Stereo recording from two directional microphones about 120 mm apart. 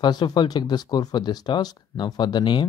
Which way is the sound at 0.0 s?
35° left (ahead or behind).